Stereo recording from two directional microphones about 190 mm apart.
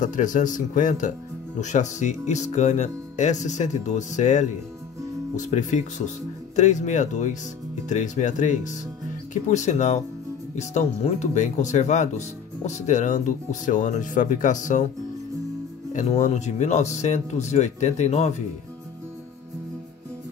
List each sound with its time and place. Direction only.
0.0 s speech: 40° left (ahead or behind)
15.9 s speech: 40° left (ahead or behind)